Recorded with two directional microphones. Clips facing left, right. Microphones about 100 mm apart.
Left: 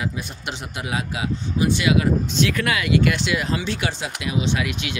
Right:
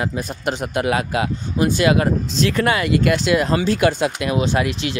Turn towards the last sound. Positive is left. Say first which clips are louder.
# right 4 dB
turn(degrees=-35)  # may be behind; listen again after turning